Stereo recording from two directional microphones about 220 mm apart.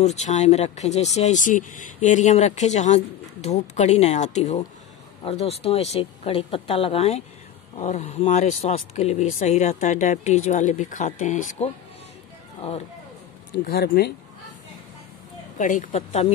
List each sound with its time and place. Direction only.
0.0 s speech: 30° left (ahead or behind)
13.7 s speech: 45° left (ahead or behind)
15.5 s speech: 35° left (ahead or behind)